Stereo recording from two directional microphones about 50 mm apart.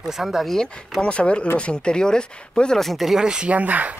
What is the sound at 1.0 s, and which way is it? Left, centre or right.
Speech, left.